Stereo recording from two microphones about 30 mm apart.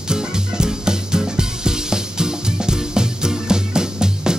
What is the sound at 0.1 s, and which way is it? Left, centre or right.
Music, right.